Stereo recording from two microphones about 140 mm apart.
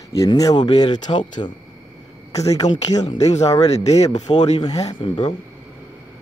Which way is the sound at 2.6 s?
55° left (ahead or behind).